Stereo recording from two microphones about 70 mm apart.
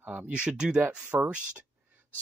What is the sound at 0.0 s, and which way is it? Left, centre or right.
Speech, right.